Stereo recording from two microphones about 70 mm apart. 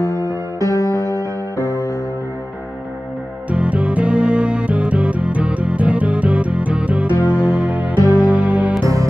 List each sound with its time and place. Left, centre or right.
0.6 s music: left
3.4 s music: centre